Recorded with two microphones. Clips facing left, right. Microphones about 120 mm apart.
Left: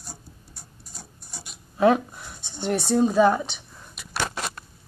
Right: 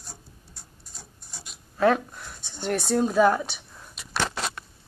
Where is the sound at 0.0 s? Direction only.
5° left (ahead or behind).